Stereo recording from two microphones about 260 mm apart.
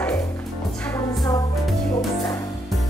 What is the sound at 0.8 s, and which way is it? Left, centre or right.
Music, centre.